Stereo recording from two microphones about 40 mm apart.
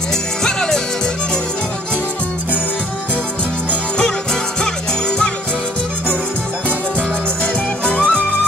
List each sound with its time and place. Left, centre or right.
0.4 s music: centre
4.0 s music: centre
7.8 s music: left